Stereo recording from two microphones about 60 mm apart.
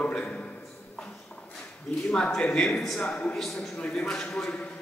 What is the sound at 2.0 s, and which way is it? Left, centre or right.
A man's voice, centre.